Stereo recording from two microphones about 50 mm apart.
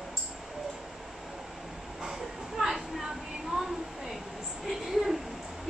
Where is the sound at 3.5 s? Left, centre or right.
Centre.